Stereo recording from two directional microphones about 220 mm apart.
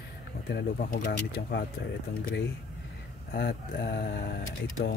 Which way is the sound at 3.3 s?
45° left (ahead or behind).